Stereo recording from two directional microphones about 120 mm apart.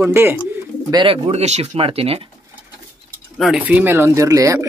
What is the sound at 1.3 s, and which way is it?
Speech, 65° right (ahead or behind).